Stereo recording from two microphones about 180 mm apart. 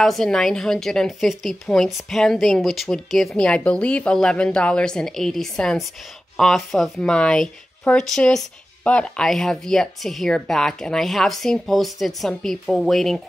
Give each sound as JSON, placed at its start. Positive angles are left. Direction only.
{"t": 0.0, "sound": "speech", "side_deg": 0}